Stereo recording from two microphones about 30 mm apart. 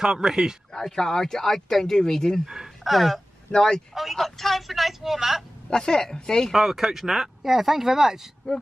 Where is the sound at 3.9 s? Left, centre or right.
Centre.